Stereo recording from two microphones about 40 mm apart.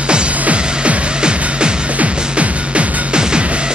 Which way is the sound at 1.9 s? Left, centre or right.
Right.